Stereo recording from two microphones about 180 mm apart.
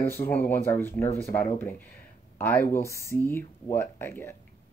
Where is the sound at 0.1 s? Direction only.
10° left (ahead or behind).